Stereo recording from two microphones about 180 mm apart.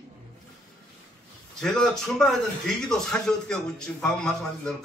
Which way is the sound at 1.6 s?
Centre (ahead or behind).